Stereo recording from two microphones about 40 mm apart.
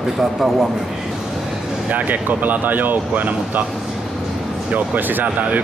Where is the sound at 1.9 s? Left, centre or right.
Right.